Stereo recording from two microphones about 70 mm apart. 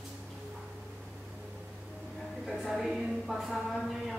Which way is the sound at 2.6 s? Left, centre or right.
Centre.